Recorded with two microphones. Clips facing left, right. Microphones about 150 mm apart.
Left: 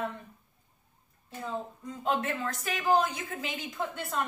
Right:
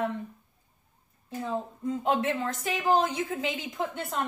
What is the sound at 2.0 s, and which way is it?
A woman's voice, 20° right (ahead or behind).